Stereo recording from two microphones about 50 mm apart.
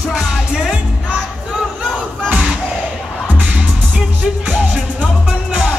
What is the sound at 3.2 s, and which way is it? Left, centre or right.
Music, right.